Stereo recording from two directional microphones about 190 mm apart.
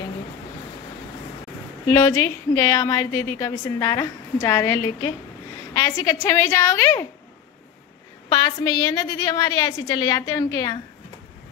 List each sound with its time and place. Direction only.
1.9 s a woman's voice: 15° left (ahead or behind)
8.3 s a woman's voice: 20° left (ahead or behind)